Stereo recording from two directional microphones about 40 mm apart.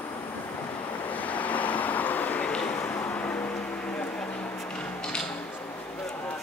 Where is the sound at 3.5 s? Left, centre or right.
Left.